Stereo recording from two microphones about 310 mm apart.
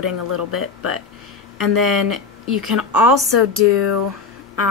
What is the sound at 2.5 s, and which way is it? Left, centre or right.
A woman's voice, left.